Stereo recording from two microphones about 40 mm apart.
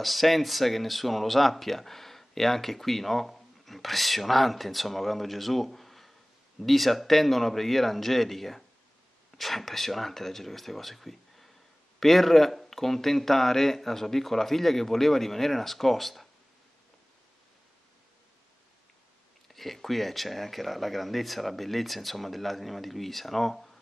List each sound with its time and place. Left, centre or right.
0.0 s speech: centre
19.4 s speech: centre